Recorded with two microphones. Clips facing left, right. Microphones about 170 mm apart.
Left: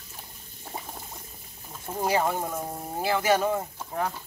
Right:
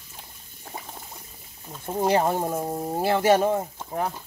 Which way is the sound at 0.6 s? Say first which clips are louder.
Even; 5° left (ahead or behind).